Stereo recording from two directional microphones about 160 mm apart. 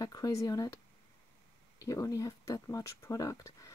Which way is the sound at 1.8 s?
20° left (ahead or behind).